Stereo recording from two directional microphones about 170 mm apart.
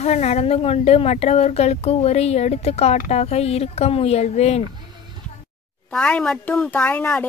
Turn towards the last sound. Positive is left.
turn(degrees=10)  # may be behind; listen again after turning